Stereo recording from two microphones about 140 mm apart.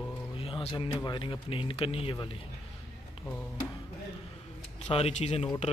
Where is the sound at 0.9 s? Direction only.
25° left (ahead or behind).